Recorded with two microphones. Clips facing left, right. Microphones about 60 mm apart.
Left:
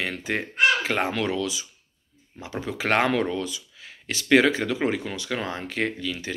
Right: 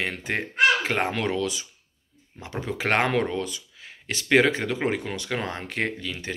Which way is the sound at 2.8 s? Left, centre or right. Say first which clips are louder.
Left 1 dB; right.